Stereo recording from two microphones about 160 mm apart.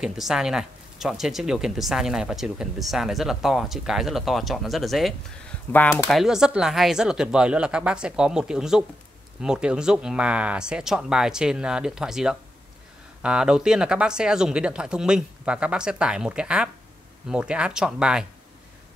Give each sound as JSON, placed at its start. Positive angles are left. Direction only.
{"t": 0.0, "sound": "speech", "side_deg": -5}
{"t": 5.7, "sound": "speech", "side_deg": 10}
{"t": 6.0, "sound": "speech", "side_deg": 0}